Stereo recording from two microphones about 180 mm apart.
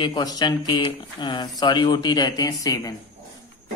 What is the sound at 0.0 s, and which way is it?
Speech, 25° left (ahead or behind).